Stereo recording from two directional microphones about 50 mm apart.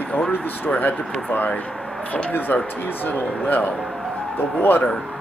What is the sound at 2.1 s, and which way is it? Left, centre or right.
Speech, left.